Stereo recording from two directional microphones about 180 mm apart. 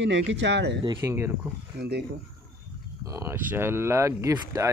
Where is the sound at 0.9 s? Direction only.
15° right (ahead or behind).